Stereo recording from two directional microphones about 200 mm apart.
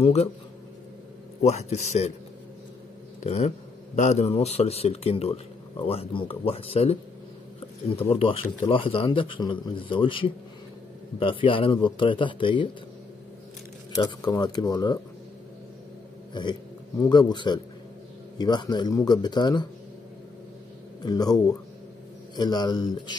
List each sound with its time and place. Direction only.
0.0 s a man's voice: 30° left (ahead or behind)
1.4 s a man's voice: 35° left (ahead or behind)
3.2 s a man's voice: 35° left (ahead or behind)
13.9 s a man's voice: 15° left (ahead or behind)
16.3 s a man's voice: 20° left (ahead or behind)
21.0 s a man's voice: 20° left (ahead or behind)